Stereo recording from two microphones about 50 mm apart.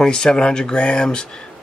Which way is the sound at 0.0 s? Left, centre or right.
Centre.